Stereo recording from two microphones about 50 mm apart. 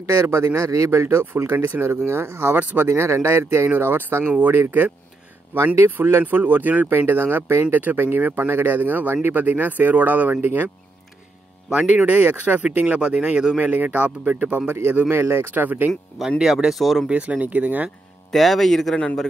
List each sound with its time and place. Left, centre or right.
0.0 s speech: right
1.0 s speech: right
2.7 s speech: right
3.0 s speech: right
4.2 s speech: right
6.9 s speech: right
7.7 s speech: right
11.7 s speech: right
14.7 s speech: right
16.2 s speech: centre
17.1 s speech: right
18.3 s speech: centre